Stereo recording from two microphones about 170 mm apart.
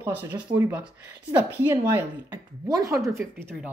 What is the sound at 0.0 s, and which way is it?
Speech, 10° right (ahead or behind).